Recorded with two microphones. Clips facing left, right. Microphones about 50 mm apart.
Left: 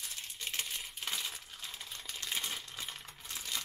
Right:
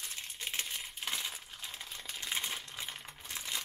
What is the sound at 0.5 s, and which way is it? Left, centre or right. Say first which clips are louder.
Crumpling: even; centre.